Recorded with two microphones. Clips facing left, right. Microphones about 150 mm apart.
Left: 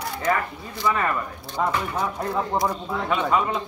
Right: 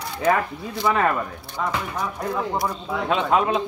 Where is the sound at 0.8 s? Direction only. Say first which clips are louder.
Right 3 dB; 90° right.